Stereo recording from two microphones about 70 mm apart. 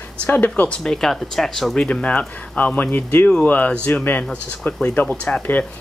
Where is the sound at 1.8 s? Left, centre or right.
Centre.